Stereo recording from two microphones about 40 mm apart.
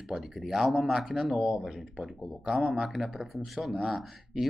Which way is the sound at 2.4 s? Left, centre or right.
Centre.